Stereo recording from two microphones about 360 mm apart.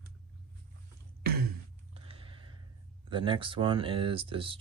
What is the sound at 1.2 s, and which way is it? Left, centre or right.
Throat clearing, right.